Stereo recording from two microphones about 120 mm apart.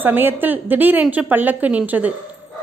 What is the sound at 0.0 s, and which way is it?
A woman's voice, 15° right (ahead or behind).